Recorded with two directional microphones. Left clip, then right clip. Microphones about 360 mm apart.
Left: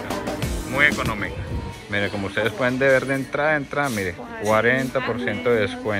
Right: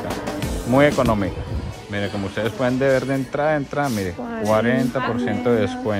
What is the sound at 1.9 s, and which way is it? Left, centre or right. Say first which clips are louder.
A man's voice: left 2 dB; centre.